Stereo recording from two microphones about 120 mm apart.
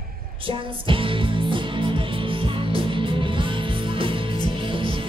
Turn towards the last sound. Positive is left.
turn(degrees=-45)  # may be behind; listen again after turning